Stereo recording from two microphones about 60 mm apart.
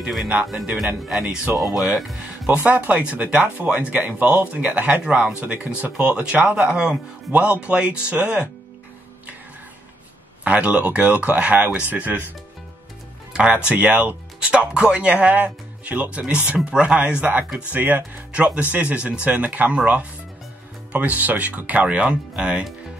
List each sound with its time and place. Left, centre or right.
0.5 s speech: centre
2.4 s speech: right
6.5 s speech: centre
7.2 s speech: right
10.4 s speech: right
13.3 s speech: centre